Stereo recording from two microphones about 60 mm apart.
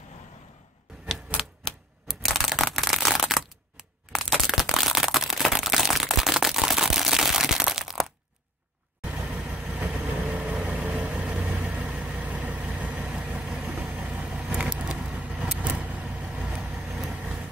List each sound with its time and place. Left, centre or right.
1.4 s typewriter: centre
9.3 s vehicle: centre
16.7 s vehicle: centre
17.1 s vehicle: centre